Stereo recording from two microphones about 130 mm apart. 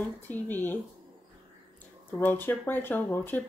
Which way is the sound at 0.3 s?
15° left (ahead or behind).